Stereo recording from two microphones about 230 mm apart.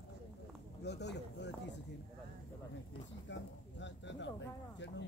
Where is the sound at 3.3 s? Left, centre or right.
Left.